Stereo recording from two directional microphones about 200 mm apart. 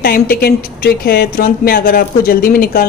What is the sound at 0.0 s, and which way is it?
A woman's voice, 50° left (ahead or behind).